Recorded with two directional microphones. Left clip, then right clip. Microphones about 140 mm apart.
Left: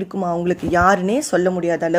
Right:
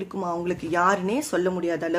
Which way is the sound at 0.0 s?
25° left (ahead or behind).